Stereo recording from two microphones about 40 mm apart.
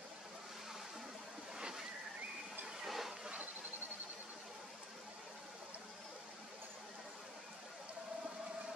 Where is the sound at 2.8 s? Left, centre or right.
Centre.